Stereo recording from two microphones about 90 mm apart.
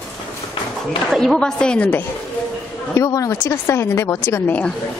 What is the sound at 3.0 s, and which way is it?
A woman's voice, 35° left (ahead or behind).